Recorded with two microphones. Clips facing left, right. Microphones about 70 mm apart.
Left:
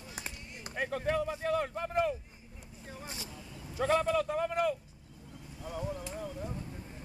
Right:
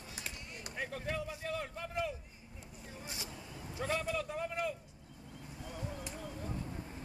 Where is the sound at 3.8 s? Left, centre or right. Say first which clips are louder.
Left 8 dB; left.